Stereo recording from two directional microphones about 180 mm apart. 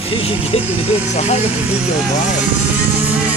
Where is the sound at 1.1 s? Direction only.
35° left (ahead or behind).